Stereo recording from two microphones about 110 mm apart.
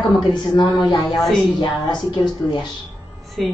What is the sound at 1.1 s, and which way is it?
Speech, centre (ahead or behind).